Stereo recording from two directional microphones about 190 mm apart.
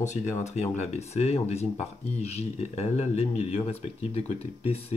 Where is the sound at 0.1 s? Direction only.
40° left (ahead or behind).